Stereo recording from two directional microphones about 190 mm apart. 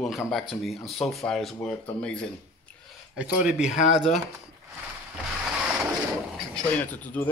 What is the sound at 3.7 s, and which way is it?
Speech, 35° left (ahead or behind).